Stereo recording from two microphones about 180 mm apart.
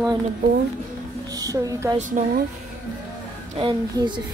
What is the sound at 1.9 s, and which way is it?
Speech, 45° right (ahead or behind).